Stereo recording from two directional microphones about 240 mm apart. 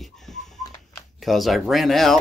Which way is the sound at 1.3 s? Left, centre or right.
Centre.